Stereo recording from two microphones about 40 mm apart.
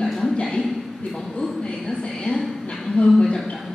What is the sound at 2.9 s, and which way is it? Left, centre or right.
Speech, left.